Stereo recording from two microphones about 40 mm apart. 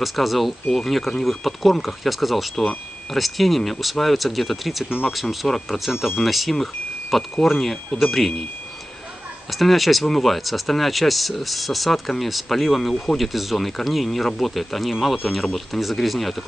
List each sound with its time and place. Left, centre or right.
0.0 s speech: centre
4.8 s speech: centre
5.1 s speech: centre
9.5 s speech: centre